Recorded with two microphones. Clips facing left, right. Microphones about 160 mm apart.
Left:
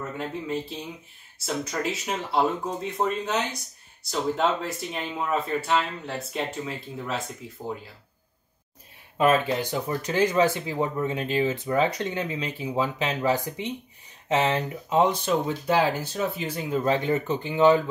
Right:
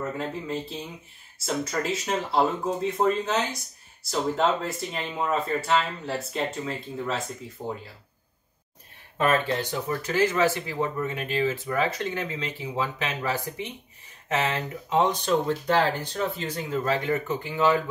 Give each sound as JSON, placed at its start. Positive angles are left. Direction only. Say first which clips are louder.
{"t": 0.2, "sound": "speech", "louder": "left 1 dB", "side_deg": 0}
{"t": 9.2, "sound": "speech", "louder": "left 2 dB", "side_deg": 15}